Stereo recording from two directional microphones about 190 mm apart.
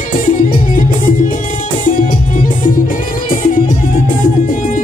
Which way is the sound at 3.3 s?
45° left (ahead or behind).